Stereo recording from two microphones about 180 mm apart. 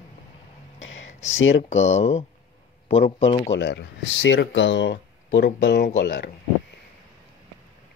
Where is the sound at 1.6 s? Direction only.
40° left (ahead or behind).